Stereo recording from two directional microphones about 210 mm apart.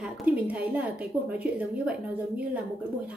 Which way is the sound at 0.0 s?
5° right (ahead or behind).